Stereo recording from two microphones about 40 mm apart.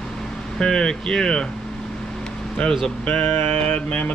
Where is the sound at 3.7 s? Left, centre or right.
Left.